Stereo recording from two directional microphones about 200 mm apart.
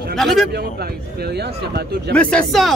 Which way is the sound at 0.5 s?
55° right (ahead or behind).